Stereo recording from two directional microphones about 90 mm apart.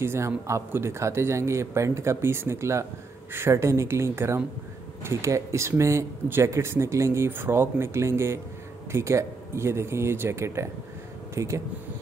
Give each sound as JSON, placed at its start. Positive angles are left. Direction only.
{"t": 0.0, "sound": "speech", "side_deg": -30}